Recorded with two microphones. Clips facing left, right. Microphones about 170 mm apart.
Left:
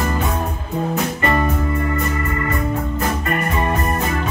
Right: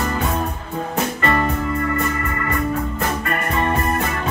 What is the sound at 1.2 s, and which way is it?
Music, 15° left (ahead or behind).